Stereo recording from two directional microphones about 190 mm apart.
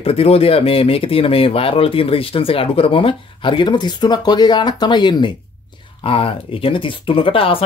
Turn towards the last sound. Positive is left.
turn(degrees=30)  # may be behind; listen again after turning